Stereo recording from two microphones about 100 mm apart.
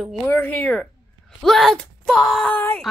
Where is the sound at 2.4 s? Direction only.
15° left (ahead or behind).